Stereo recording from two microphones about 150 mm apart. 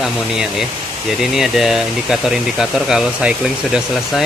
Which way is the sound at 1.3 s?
Centre (ahead or behind).